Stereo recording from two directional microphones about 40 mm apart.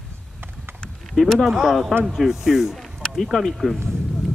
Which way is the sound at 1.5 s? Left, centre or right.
Centre.